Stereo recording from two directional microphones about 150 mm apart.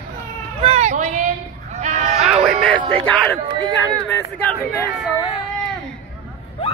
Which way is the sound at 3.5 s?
20° right (ahead or behind).